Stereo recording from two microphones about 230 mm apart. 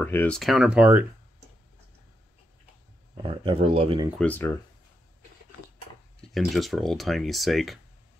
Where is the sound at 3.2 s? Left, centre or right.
Right.